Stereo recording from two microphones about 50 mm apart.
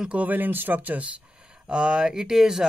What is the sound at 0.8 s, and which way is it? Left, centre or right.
Speech, right.